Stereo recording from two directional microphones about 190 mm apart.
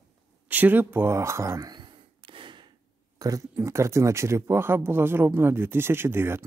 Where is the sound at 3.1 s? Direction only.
20° right (ahead or behind).